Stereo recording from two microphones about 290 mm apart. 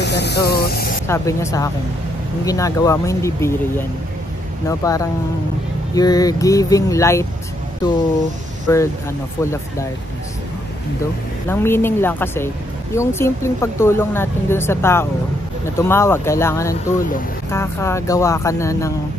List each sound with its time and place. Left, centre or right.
0.0 s speech: left
1.0 s speech: centre
8.7 s speech: centre
11.4 s speech: centre